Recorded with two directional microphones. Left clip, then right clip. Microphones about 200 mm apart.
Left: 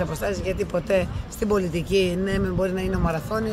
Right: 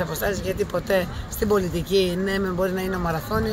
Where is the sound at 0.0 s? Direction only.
5° left (ahead or behind).